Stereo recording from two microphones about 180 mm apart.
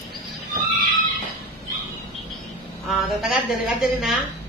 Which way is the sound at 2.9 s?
Centre (ahead or behind).